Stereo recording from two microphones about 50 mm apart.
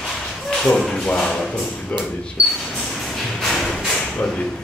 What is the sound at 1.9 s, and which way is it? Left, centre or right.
Speech, left.